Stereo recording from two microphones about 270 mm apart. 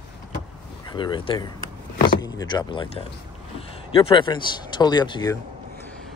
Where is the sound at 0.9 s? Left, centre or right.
Centre.